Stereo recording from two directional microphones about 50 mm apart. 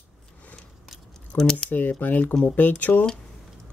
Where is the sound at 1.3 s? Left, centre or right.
Left.